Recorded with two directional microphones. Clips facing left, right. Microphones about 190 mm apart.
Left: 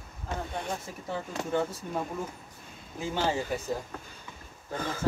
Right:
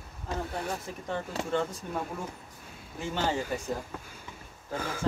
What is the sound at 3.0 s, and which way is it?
Speech, 10° left (ahead or behind).